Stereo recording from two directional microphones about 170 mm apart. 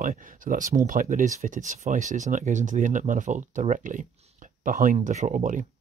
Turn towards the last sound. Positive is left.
turn(degrees=-50)  # may be behind; listen again after turning